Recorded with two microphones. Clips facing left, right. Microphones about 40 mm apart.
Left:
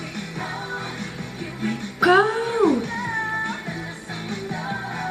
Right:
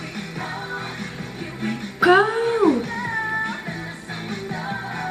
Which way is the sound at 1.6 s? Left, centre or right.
Centre.